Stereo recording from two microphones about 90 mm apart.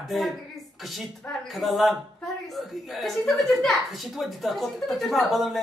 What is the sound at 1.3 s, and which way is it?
Speech, centre (ahead or behind).